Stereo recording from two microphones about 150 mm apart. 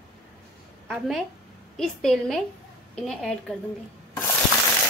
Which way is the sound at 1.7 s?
Centre (ahead or behind).